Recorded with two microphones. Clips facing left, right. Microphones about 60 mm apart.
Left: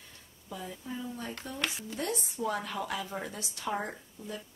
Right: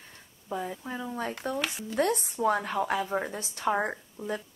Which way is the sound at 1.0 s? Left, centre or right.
Right.